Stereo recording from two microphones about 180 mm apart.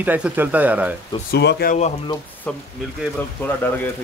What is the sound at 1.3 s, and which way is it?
Speech, 65° left (ahead or behind).